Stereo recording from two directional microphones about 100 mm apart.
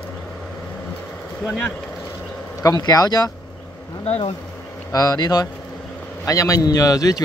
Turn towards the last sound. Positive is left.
turn(degrees=35)  # may be behind; listen again after turning